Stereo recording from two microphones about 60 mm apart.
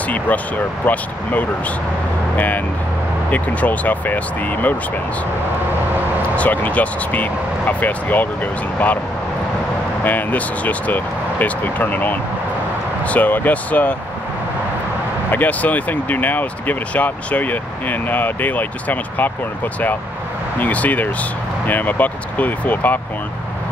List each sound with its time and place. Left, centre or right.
0.8 s speech: left
6.3 s speech: left
10.0 s speech: left
15.3 s speech: left
20.5 s speech: left